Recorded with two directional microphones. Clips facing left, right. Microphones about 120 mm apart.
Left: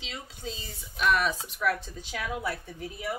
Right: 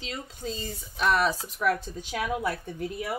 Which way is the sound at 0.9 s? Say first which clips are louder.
Right 2 dB; 30° right (ahead or behind).